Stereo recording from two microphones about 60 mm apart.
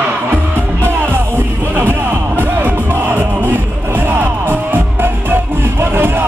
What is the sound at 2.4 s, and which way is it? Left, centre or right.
Music, right.